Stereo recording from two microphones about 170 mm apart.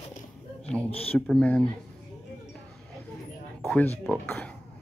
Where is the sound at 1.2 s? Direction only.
5° left (ahead or behind).